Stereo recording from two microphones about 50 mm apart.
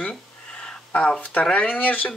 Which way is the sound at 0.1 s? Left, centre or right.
Centre.